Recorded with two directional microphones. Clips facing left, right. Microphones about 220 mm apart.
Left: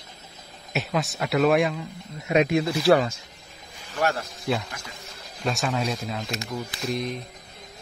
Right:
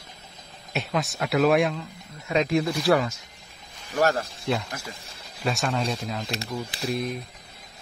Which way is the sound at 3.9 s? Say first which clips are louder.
Right 3 dB; 40° right (ahead or behind).